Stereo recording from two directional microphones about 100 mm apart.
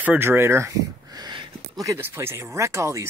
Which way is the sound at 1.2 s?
40° right (ahead or behind).